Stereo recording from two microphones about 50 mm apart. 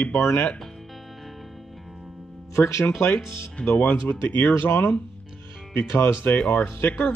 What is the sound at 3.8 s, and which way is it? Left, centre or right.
Speech, left.